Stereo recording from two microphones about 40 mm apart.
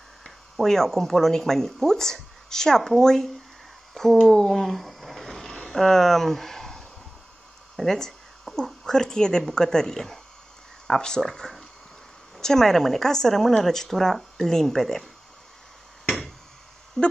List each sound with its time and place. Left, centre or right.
0.2 s speech: centre
3.9 s a sound: centre
8.8 s speech: centre
17.0 s speech: centre